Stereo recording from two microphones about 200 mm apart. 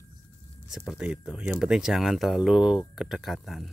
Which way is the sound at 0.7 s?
Centre (ahead or behind).